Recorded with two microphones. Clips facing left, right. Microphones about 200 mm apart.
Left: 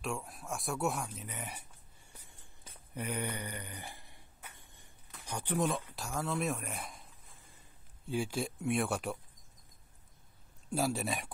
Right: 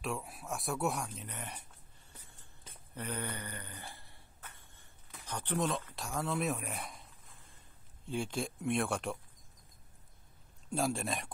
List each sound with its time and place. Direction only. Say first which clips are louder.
0.0 s speech: even; centre (ahead or behind)
2.1 s a sound: even; 15° left (ahead or behind)
5.2 s speech: left 1 dB; 10° left (ahead or behind)
8.1 s speech: left 2 dB; 5° left (ahead or behind)
10.7 s speech: left 1 dB; 5° left (ahead or behind)